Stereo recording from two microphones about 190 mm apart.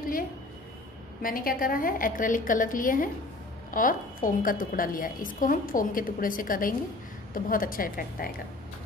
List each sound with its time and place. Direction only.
1.2 s a woman's voice: 50° left (ahead or behind)